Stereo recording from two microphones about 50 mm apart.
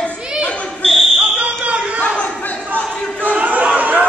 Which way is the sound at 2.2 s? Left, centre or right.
Left.